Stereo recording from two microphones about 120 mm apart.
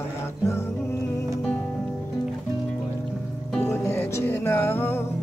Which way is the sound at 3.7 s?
20° left (ahead or behind).